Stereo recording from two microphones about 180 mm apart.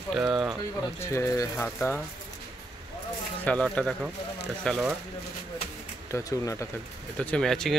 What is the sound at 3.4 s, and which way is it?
Speech, 5° left (ahead or behind).